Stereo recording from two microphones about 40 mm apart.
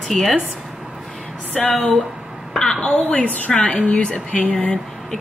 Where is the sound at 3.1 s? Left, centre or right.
Left.